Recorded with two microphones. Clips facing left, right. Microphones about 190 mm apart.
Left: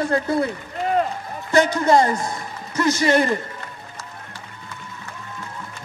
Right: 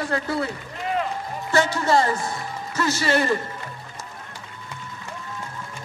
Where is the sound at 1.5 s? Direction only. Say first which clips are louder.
Left 4 dB; 20° left (ahead or behind).